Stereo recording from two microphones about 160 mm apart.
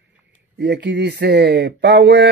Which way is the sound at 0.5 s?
90° right.